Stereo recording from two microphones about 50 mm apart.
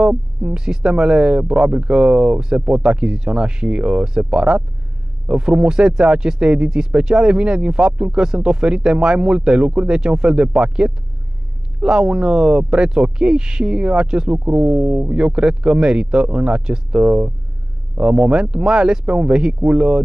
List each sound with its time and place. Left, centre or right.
0.4 s speech: centre